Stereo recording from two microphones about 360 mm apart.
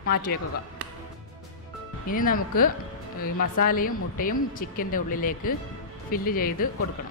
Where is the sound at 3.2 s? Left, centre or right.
Left.